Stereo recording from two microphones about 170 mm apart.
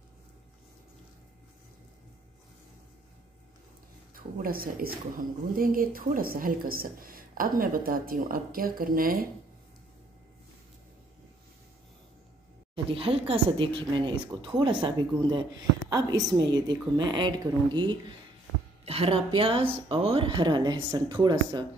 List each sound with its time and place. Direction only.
4.1 s a woman's voice: 55° right (ahead or behind)
12.7 s a woman's voice: 35° right (ahead or behind)